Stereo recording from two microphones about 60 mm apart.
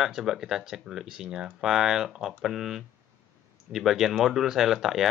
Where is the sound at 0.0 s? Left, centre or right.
Centre.